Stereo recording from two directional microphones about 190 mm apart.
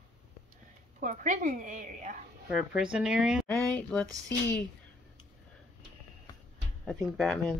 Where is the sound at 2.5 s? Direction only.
5° right (ahead or behind).